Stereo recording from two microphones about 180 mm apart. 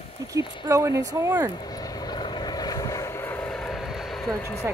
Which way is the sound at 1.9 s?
25° left (ahead or behind).